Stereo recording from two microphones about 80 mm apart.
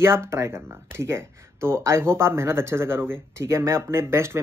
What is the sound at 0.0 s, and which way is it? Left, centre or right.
Speech, right.